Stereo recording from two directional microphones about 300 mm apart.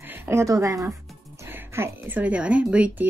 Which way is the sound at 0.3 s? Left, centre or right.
Centre.